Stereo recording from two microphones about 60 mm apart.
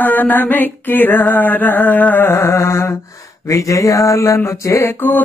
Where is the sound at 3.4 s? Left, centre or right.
Left.